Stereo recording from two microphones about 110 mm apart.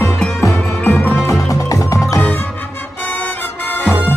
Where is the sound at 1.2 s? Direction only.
30° left (ahead or behind).